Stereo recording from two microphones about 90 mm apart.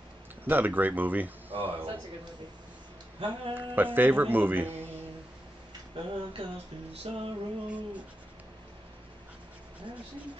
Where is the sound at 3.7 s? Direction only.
20° right (ahead or behind).